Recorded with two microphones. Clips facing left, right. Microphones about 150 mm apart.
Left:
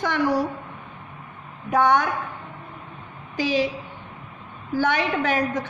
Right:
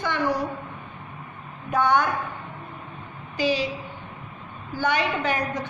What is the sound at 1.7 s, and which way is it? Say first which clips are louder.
Speech: left 2 dB; 90° left.